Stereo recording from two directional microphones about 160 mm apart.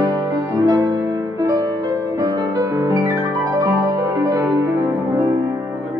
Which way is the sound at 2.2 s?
25° right (ahead or behind).